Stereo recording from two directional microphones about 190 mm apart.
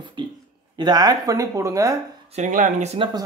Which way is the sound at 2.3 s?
40° right (ahead or behind).